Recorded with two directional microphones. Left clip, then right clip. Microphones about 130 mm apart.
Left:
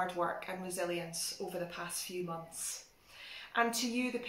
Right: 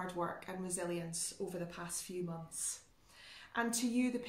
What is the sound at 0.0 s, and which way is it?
Speech, 35° right (ahead or behind).